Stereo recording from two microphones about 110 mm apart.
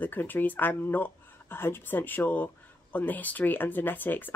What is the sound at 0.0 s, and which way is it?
Speech, 15° left (ahead or behind).